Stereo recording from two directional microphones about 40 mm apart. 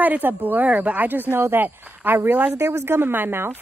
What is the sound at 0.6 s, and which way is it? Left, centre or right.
Speech, right.